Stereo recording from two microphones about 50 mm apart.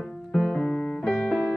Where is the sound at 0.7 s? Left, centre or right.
Left.